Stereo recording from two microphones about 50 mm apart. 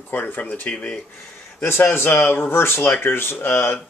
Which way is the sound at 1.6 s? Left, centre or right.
Left.